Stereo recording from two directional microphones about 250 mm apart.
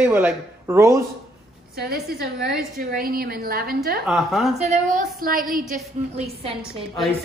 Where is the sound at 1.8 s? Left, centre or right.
Right.